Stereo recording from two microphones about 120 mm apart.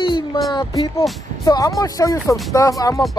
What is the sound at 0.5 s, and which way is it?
Speech, 30° left (ahead or behind).